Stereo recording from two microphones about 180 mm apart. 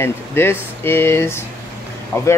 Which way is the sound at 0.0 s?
15° left (ahead or behind).